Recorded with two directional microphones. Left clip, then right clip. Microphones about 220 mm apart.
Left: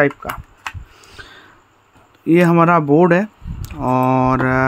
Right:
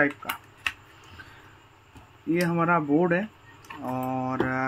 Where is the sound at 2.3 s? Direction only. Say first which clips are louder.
Left 12 dB; 55° left (ahead or behind).